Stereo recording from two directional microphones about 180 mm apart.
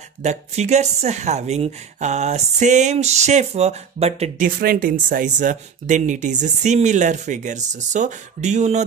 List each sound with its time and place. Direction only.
0.2 s a woman's voice: 40° right (ahead or behind)
4.5 s speech: 55° right (ahead or behind)